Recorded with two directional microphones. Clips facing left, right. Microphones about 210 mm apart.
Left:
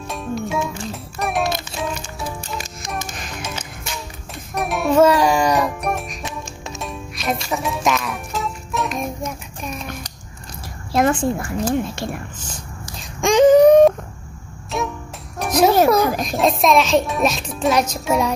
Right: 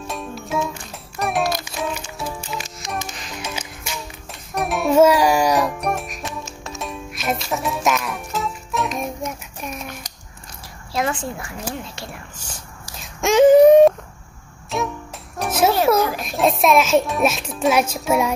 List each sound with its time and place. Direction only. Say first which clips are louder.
0.0 s music: left 5 dB; centre (ahead or behind)
10.9 s a woman's voice: left 6 dB; 50° left (ahead or behind)
13.2 s wail: even; 5° right (ahead or behind)
14.7 s music: even; centre (ahead or behind)
16.1 s a sound: left 5 dB; 40° left (ahead or behind)
16.3 s a child's voice: even; 5° right (ahead or behind)